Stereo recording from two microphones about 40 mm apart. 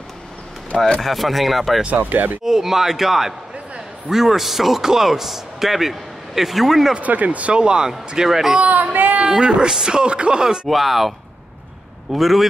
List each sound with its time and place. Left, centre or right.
1.0 s speech: centre
2.0 s speech: right
2.4 s a man's voice: centre
7.0 s speech: right
7.6 s speech: right
8.3 s a man's voice: centre
8.5 s a sound: right
9.3 s speech: centre
10.7 s speech: centre